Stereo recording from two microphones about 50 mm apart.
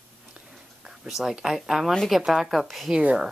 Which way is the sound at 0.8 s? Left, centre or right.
Centre.